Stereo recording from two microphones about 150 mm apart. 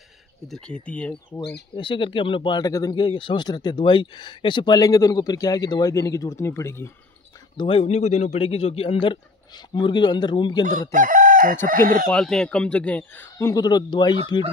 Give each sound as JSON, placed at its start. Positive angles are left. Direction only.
{"t": 0.5, "sound": "a man's voice", "side_deg": 5}
{"t": 1.8, "sound": "speech", "side_deg": 35}
{"t": 7.5, "sound": "speech", "side_deg": 35}
{"t": 10.9, "sound": "chicken", "side_deg": -60}
{"t": 12.1, "sound": "a man's voice", "side_deg": 5}